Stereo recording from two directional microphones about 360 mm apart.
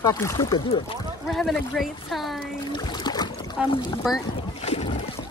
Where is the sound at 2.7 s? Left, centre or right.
Centre.